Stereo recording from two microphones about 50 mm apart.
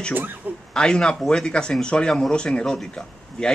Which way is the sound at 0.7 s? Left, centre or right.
Centre.